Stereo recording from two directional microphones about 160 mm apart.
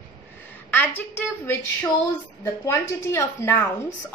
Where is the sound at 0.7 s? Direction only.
10° left (ahead or behind).